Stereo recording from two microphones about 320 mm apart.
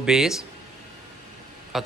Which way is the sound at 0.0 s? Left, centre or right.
Centre.